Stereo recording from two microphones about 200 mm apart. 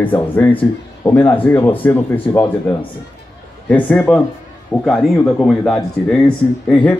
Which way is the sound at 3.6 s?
5° left (ahead or behind).